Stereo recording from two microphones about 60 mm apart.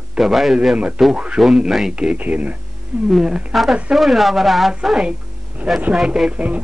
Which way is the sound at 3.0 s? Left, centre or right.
Centre.